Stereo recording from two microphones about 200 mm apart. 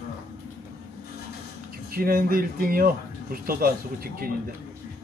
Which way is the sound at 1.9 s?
45° right (ahead or behind).